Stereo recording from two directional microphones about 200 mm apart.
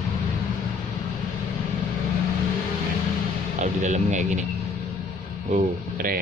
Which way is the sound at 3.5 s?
35° right (ahead or behind).